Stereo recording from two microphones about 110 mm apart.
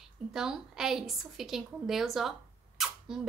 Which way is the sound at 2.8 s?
5° right (ahead or behind).